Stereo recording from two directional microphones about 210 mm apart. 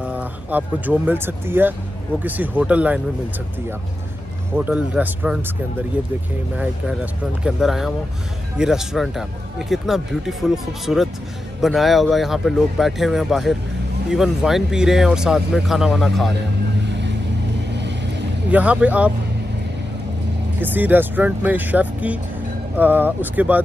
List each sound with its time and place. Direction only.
0.0 s speech: 5° right (ahead or behind)
4.6 s speech: 5° right (ahead or behind)
6.5 s speech: 5° right (ahead or behind)
17.7 s vehicle: 55° right (ahead or behind)
18.5 s speech: 5° right (ahead or behind)
20.6 s speech: 10° right (ahead or behind)